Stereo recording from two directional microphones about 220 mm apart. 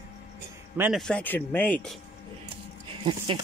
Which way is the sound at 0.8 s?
5° right (ahead or behind).